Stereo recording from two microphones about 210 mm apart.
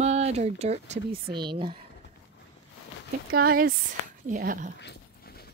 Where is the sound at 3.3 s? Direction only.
45° right (ahead or behind).